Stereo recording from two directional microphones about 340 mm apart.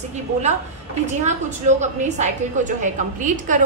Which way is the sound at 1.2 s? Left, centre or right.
Right.